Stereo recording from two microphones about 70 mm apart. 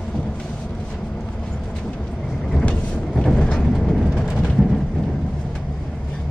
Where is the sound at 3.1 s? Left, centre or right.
Centre.